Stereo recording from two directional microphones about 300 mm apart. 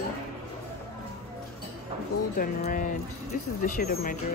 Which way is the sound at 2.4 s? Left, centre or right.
Left.